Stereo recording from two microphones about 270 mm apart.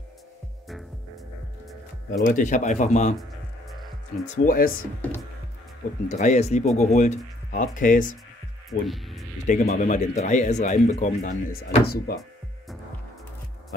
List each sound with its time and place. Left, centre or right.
2.0 s speech: left
4.5 s speech: left
6.0 s speech: left
8.6 s speech: centre
9.5 s speech: left